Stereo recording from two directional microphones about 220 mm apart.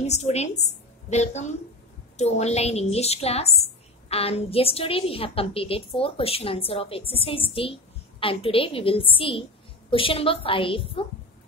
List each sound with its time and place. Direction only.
0.0 s a woman's voice: 30° left (ahead or behind)